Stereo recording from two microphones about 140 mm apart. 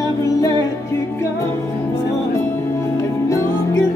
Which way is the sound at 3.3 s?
20° left (ahead or behind).